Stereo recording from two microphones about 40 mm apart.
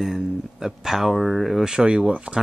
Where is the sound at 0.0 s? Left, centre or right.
Centre.